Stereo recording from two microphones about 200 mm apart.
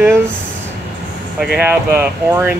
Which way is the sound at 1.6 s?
10° right (ahead or behind).